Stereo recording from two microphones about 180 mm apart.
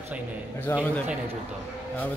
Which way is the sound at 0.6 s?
10° left (ahead or behind).